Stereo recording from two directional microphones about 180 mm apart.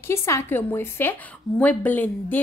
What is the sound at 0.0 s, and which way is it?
A woman's voice, 15° left (ahead or behind).